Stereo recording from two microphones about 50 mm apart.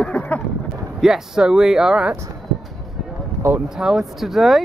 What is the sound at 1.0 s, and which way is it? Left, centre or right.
Speech, centre.